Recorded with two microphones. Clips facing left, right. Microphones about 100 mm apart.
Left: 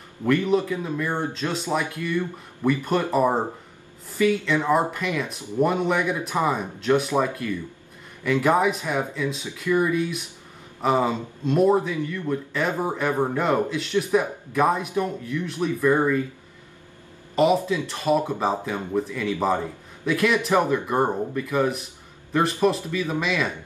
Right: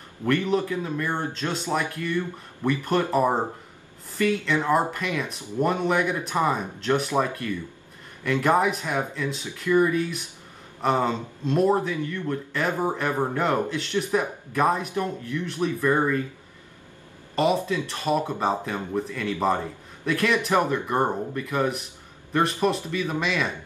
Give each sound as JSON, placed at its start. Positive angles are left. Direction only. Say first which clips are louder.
{"t": 0.2, "sound": "speech", "louder": "left 2 dB", "side_deg": 0}
{"t": 17.4, "sound": "speech", "louder": "left 3 dB", "side_deg": 0}